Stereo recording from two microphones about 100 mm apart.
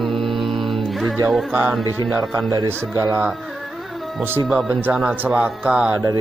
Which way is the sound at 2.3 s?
40° right (ahead or behind).